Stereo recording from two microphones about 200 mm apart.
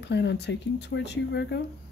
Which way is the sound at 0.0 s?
60° left (ahead or behind).